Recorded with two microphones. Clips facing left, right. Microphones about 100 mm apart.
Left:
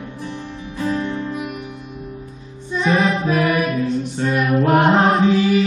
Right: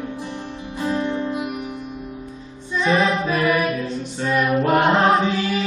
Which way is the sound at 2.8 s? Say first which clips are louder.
Left 1 dB; 5° left (ahead or behind).